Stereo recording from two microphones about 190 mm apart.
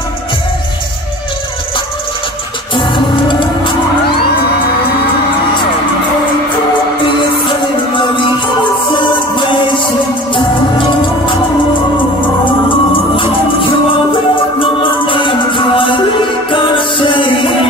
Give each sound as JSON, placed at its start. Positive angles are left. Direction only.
{"t": 2.7, "sound": "music", "side_deg": 25}
{"t": 8.9, "sound": "music", "side_deg": 25}
{"t": 12.2, "sound": "music", "side_deg": 25}
{"t": 14.6, "sound": "music", "side_deg": 25}